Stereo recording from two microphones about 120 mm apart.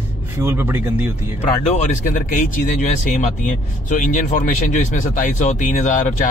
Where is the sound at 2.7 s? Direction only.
85° left.